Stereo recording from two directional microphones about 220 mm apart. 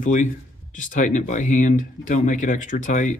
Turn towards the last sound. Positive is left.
turn(degrees=35)  # may be behind; listen again after turning